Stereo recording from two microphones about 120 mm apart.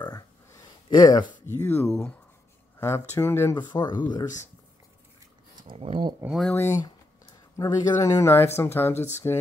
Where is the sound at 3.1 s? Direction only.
20° left (ahead or behind).